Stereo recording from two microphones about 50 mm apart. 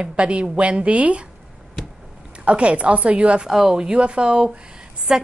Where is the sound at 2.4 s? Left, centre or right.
Right.